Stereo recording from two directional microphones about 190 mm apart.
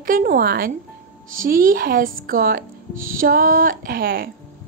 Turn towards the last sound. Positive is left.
turn(degrees=-50)  # may be behind; listen again after turning